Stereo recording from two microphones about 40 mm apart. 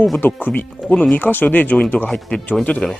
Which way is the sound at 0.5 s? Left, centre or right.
Left.